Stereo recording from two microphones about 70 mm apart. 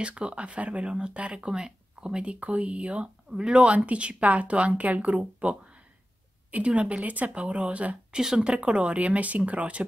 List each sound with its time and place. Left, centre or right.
0.0 s speech: centre